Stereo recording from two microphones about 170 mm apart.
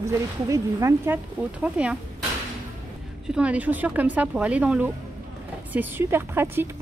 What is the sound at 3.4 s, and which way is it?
Speech, 10° right (ahead or behind).